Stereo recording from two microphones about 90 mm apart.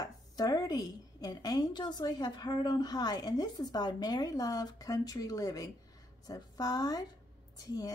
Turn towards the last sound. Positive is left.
turn(degrees=45)  # may be behind; listen again after turning